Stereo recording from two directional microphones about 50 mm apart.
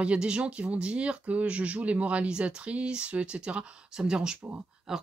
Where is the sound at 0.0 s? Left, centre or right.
Right.